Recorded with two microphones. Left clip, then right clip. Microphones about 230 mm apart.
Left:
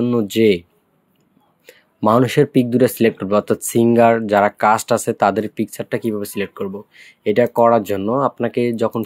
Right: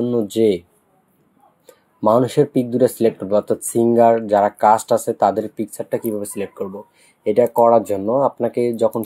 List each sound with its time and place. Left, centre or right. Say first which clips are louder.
0.1 s speech: left 2 dB; left
1.7 s speech: even; left